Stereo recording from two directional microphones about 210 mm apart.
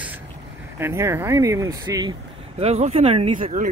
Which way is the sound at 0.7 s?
10° right (ahead or behind).